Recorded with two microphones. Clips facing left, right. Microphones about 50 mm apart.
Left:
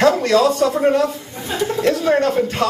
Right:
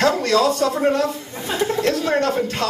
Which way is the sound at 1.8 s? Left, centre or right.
Centre.